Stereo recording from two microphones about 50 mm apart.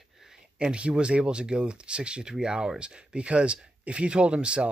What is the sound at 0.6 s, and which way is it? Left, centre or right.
Speech, right.